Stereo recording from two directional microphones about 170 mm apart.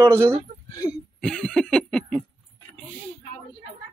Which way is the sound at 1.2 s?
5° left (ahead or behind).